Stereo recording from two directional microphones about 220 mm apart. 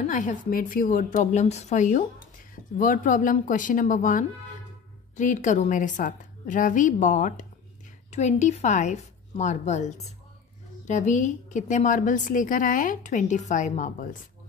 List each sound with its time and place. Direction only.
0.0 s a woman's voice: 35° left (ahead or behind)